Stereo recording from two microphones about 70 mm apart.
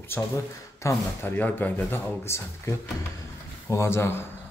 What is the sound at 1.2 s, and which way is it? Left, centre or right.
Speech, left.